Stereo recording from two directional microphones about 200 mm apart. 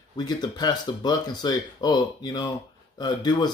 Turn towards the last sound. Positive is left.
turn(degrees=20)  # may be behind; listen again after turning